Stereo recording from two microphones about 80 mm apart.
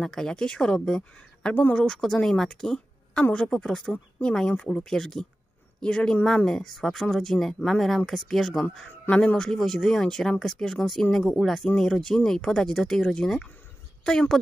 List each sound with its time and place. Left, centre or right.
0.0 s speech: centre
2.0 s a woman's voice: centre
9.1 s speech: centre